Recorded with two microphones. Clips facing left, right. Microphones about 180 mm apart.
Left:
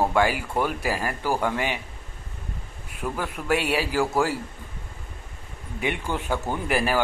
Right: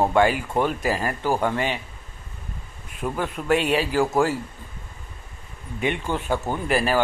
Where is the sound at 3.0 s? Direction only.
15° right (ahead or behind).